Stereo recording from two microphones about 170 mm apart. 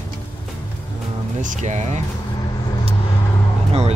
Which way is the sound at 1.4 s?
45° right (ahead or behind).